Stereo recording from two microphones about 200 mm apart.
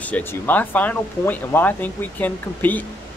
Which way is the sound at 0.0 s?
10° left (ahead or behind).